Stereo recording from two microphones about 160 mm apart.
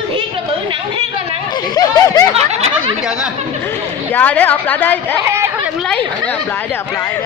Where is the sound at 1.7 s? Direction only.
20° left (ahead or behind).